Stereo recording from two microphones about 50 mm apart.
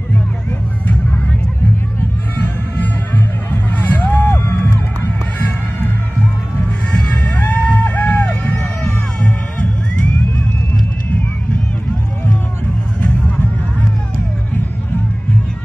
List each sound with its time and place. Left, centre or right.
2.4 s music: left
4.2 s music: left
7.3 s music: left